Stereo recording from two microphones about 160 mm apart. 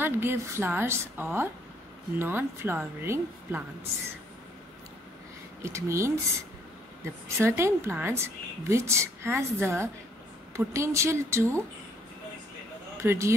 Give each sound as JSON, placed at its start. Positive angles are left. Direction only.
{"t": 0.0, "sound": "a woman's voice", "side_deg": -15}
{"t": 5.6, "sound": "a woman's voice", "side_deg": -15}
{"t": 7.3, "sound": "a woman's voice", "side_deg": -15}
{"t": 13.0, "sound": "a woman's voice", "side_deg": -15}